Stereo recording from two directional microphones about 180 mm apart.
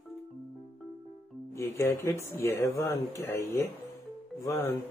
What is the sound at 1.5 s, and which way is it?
Speech, 15° left (ahead or behind).